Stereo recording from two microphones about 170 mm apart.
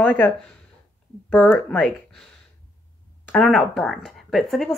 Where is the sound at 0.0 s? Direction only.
10° left (ahead or behind).